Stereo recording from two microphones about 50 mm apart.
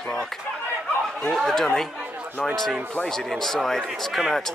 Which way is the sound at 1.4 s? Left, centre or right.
Centre.